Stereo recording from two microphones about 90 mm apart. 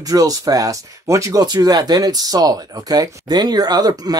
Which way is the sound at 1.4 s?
45° right (ahead or behind).